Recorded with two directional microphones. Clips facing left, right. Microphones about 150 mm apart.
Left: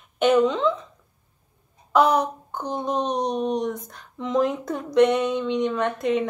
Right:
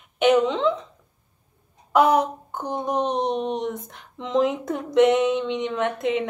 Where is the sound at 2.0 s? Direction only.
20° right (ahead or behind).